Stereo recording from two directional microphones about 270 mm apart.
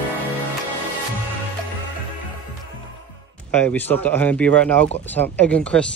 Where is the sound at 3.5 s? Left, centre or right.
Centre.